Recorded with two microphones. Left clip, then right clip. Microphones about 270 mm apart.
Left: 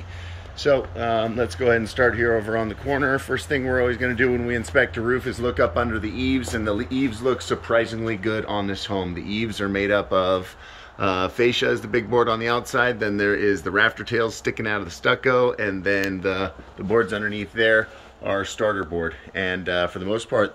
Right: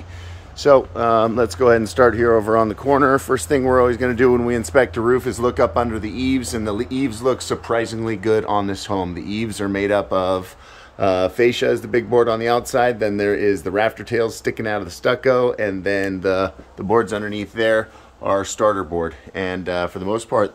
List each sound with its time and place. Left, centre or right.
0.7 s speech: centre